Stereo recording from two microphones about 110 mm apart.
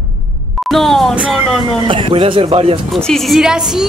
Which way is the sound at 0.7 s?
Centre (ahead or behind).